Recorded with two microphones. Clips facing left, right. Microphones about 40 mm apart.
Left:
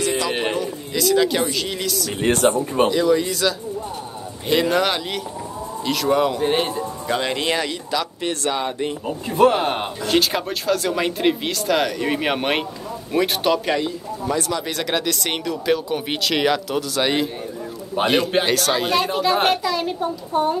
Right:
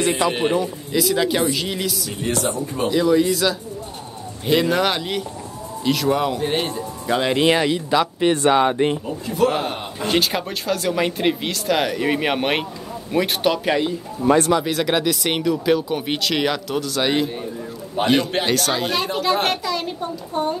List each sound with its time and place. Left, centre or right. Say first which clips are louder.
0.0 s a sound: right 3 dB; right
0.3 s a man's voice: right 2 dB; centre
0.6 s speech: right 2 dB; centre
2.2 s speech: left 5 dB; left
2.9 s a man's voice: right 1 dB; centre
7.1 s speech: right 5 dB; centre; by 8.7 s right
9.0 s a man's voice: left 3 dB; left
10.0 s speech: even; centre
14.2 s speech: right 7 dB; right
14.6 s speech: right 3 dB; centre